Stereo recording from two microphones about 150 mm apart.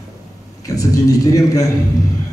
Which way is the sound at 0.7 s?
20° left (ahead or behind).